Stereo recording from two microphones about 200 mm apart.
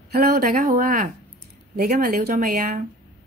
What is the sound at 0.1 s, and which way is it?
A woman's voice, 45° right (ahead or behind).